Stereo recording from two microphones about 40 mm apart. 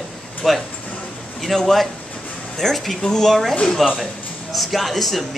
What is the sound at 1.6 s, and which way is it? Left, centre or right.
Speech, centre.